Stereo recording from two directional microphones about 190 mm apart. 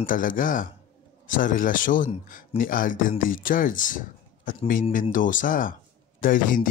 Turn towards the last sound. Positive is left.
turn(degrees=45)  # may be behind; listen again after turning